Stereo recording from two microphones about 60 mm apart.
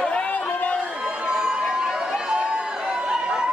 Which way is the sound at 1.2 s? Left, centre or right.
Centre.